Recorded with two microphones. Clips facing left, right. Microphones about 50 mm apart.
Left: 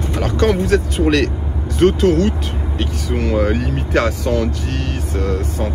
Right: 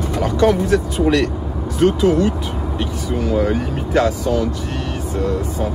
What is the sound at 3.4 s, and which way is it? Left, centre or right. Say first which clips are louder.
Speech: left 1 dB; left.